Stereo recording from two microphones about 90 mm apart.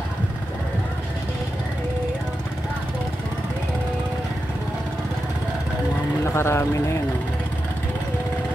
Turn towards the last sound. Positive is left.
turn(degrees=30)  # may be behind; listen again after turning